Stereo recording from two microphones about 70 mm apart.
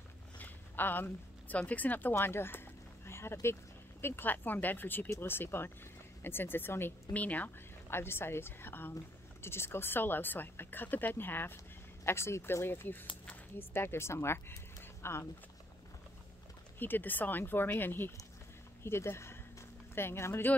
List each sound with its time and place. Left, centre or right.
0.4 s a sound: left
1.6 s speech: left
16.7 s speech: left